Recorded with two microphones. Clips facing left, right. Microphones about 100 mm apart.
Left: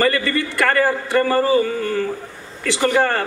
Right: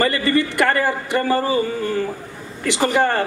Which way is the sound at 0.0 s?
20° right (ahead or behind).